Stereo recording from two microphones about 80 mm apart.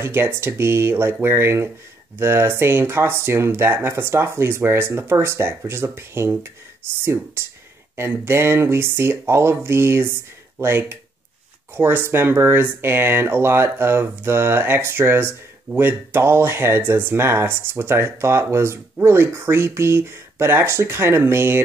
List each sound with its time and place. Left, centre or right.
0.0 s speech: right
7.9 s speech: right